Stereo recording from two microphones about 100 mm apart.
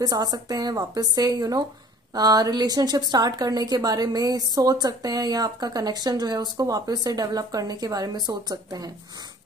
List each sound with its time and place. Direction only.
0.0 s a woman's voice: 40° right (ahead or behind)